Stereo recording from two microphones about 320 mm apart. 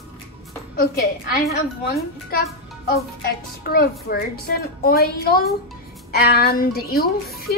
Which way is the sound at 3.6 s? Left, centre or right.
Left.